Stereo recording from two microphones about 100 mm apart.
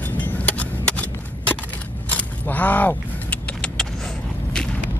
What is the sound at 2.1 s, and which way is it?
Keys jangling, 15° left (ahead or behind).